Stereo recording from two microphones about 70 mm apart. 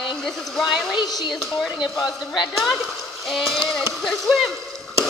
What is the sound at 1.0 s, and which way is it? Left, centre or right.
Speech, left.